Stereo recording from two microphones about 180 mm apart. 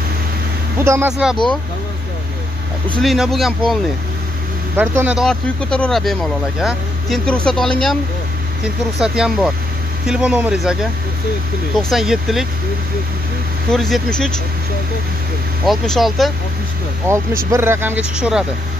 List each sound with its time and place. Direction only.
0.7 s speech: 15° right (ahead or behind)
1.1 s speech: 5° right (ahead or behind)
3.0 s speech: centre (ahead or behind)
11.9 s speech: centre (ahead or behind)
13.7 s speech: centre (ahead or behind)
15.6 s speech: centre (ahead or behind)
17.0 s speech: 15° right (ahead or behind)